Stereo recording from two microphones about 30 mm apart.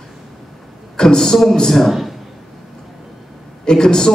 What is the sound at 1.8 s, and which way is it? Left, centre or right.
Speech, centre.